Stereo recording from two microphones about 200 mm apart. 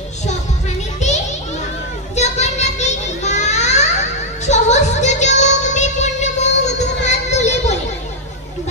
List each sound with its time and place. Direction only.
0.9 s children playing: 35° left (ahead or behind)
2.1 s a sound: 35° left (ahead or behind)
4.5 s music: 35° left (ahead or behind)